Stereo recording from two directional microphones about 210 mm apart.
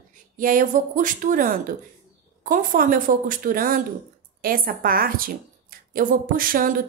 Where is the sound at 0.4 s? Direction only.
40° right (ahead or behind).